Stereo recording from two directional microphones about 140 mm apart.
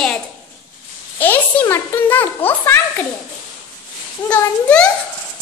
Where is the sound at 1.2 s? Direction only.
15° left (ahead or behind).